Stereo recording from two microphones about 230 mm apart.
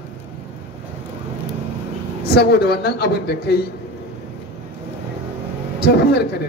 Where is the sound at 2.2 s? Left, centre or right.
Left.